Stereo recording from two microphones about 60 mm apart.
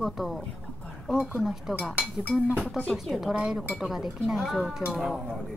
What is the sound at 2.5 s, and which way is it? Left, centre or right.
Speech, left.